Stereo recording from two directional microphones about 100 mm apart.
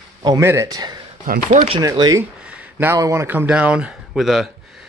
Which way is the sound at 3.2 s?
15° right (ahead or behind).